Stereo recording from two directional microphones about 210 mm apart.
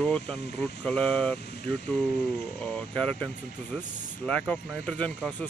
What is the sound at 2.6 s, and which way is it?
Speech, 5° left (ahead or behind).